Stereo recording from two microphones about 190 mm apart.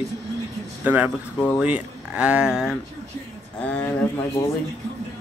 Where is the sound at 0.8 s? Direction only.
10° right (ahead or behind).